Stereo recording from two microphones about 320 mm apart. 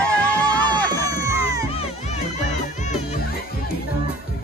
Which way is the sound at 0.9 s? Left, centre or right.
Centre.